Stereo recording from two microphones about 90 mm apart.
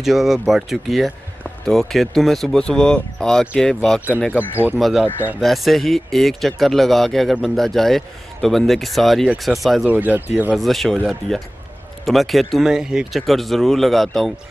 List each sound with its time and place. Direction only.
0.0 s speech: 5° right (ahead or behind)
9.8 s speech: 20° right (ahead or behind)
10.5 s speech: centre (ahead or behind)